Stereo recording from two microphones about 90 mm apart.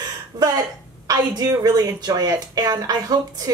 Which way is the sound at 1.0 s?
45° right (ahead or behind).